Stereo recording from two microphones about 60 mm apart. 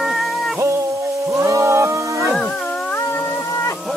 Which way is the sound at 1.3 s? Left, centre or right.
Right.